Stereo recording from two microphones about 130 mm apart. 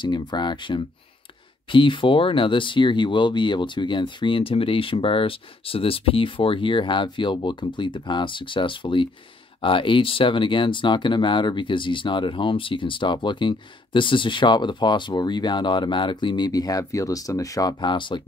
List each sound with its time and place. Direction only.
0.0 s speech: 35° left (ahead or behind)